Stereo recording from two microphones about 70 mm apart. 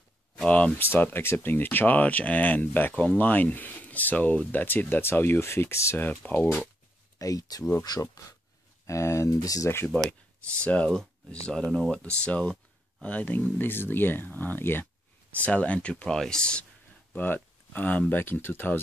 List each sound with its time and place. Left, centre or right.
0.4 s speech: centre
0.7 s speech: left
5.9 s speech: left
7.2 s speech: left
8.8 s speech: left
10.4 s speech: centre
12.0 s speech: centre
15.4 s speech: centre
17.1 s speech: left